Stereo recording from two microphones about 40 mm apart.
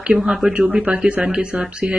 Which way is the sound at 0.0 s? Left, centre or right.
Right.